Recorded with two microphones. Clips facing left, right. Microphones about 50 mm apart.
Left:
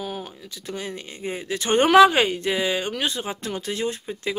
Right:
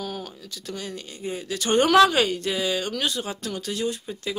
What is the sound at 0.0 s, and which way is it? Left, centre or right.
Speech, centre.